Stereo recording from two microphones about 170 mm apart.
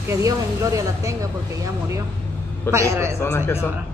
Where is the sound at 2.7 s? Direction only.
15° right (ahead or behind).